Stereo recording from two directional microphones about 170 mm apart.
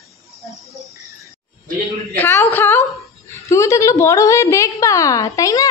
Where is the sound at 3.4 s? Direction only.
15° left (ahead or behind).